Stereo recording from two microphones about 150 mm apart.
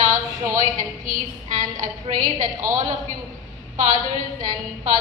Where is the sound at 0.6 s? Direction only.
60° right (ahead or behind).